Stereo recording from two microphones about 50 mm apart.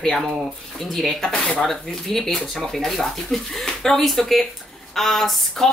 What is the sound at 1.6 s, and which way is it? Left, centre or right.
Speech, centre.